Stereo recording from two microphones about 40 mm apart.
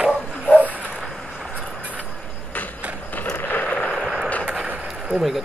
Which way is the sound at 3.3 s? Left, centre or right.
Left.